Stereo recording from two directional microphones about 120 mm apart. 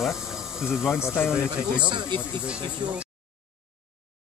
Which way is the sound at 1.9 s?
40° right (ahead or behind).